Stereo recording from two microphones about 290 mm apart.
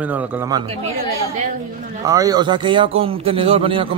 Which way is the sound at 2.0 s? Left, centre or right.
Centre.